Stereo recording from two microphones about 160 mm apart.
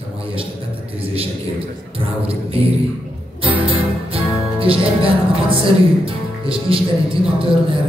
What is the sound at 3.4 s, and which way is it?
Music, 35° right (ahead or behind).